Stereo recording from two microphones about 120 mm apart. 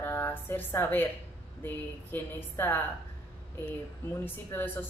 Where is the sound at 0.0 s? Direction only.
20° left (ahead or behind).